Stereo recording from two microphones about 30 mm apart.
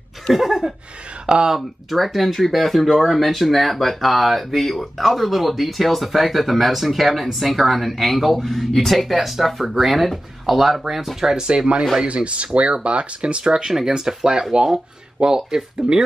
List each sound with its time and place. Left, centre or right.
0.5 s speech: centre
1.9 s speech: centre
11.3 s speech: right